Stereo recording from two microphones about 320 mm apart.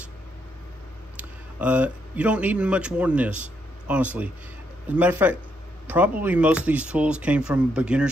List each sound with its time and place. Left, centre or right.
1.1 s speech: centre